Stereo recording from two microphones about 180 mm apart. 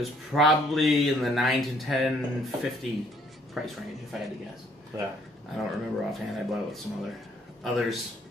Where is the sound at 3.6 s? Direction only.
Centre (ahead or behind).